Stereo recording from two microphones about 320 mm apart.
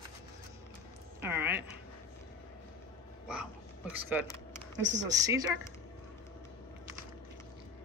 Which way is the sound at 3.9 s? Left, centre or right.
Centre.